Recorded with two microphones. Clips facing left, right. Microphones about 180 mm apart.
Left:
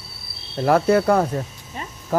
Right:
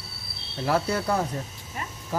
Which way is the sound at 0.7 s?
60° left (ahead or behind).